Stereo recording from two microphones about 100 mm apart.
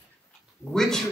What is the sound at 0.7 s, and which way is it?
Speech, 5° left (ahead or behind).